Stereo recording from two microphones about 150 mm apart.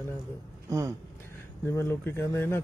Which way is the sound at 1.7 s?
15° left (ahead or behind).